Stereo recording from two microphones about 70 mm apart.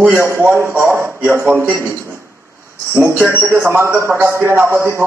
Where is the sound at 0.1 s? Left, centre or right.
Right.